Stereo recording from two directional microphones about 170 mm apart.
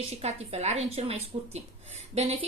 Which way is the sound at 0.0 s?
40° right (ahead or behind).